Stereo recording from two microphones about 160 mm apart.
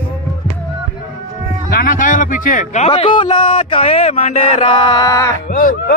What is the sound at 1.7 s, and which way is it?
A man's voice, 60° left (ahead or behind).